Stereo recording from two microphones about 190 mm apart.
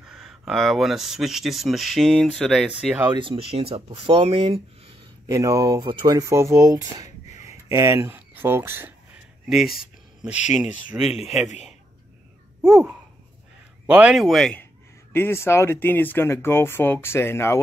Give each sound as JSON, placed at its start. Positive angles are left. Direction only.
{"t": 0.1, "sound": "speech", "side_deg": 0}
{"t": 3.1, "sound": "speech", "side_deg": -25}
{"t": 5.3, "sound": "speech", "side_deg": -15}
{"t": 7.4, "sound": "a sound", "side_deg": -15}
{"t": 10.5, "sound": "speech", "side_deg": -5}
{"t": 12.6, "sound": "speech", "side_deg": -15}